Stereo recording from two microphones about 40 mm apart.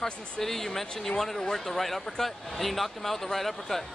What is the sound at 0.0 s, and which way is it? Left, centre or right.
Speech, centre.